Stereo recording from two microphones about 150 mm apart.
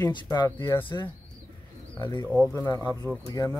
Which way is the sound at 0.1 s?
30° left (ahead or behind).